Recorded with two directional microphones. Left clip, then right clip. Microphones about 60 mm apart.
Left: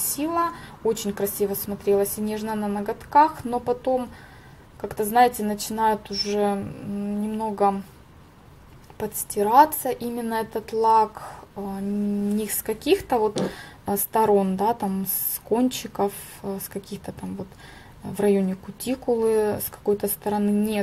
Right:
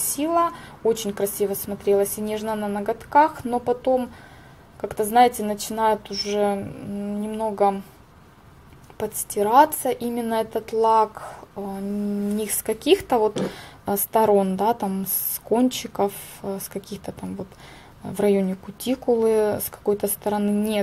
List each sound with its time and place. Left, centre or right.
0.0 s a woman's voice: right
8.9 s a woman's voice: right